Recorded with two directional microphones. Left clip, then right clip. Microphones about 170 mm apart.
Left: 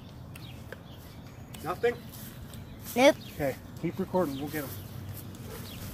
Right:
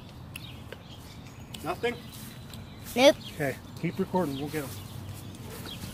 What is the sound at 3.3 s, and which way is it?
Speech, 20° right (ahead or behind).